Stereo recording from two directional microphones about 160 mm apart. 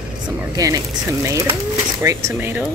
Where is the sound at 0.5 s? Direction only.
25° right (ahead or behind).